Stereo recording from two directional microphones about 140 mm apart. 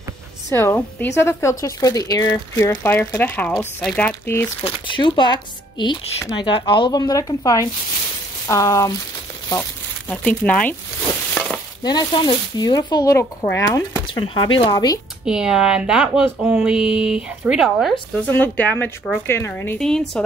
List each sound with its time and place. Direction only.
0.5 s a woman's voice: 20° left (ahead or behind)
2.8 s speech: 15° left (ahead or behind)
4.6 s speech: 35° left (ahead or behind)
9.5 s a sound: 10° left (ahead or behind)
11.8 s speech: 30° left (ahead or behind)
14.0 s speech: 35° left (ahead or behind)
15.2 s speech: 5° right (ahead or behind)
18.1 s speech: 10° left (ahead or behind)